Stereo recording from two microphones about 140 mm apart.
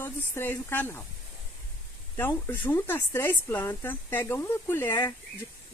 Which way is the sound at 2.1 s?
15° left (ahead or behind).